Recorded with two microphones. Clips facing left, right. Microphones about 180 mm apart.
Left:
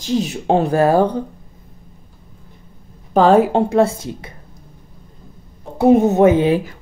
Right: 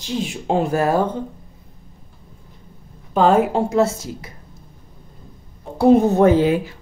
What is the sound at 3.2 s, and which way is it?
Speech, 35° left (ahead or behind).